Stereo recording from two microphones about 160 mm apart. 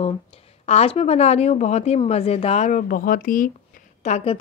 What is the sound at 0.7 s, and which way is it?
A woman's voice, 40° left (ahead or behind).